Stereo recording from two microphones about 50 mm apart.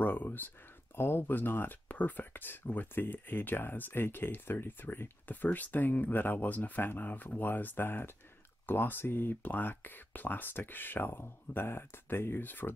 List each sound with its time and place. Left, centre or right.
0.0 s speech: left
0.9 s speech: left
1.9 s speech: left